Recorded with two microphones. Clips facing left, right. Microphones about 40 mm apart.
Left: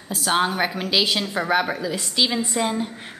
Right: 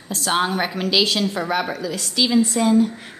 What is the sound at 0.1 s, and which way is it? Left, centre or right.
A woman's voice, centre.